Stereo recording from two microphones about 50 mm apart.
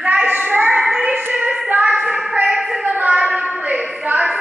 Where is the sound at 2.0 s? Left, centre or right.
Centre.